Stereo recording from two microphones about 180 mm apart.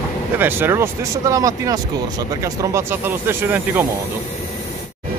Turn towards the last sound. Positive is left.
turn(degrees=-10)  # may be behind; listen again after turning